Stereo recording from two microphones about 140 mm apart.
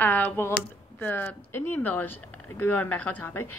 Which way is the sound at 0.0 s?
10° left (ahead or behind).